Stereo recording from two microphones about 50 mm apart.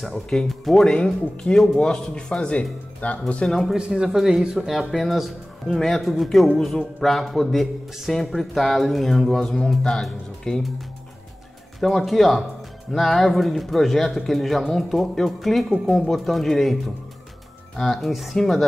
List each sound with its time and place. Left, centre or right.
0.5 s a man's voice: centre
0.8 s a man's voice: centre
1.5 s a man's voice: centre
1.9 s a man's voice: centre
3.4 s a man's voice: centre
3.7 s a man's voice: centre
11.8 s a man's voice: centre